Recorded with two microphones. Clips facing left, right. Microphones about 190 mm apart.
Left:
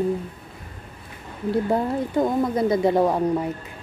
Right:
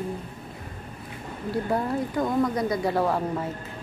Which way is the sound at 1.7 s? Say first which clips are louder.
Left 3 dB; 25° left (ahead or behind).